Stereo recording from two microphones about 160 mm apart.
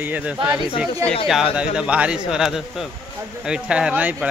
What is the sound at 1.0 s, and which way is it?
Speech, 40° left (ahead or behind).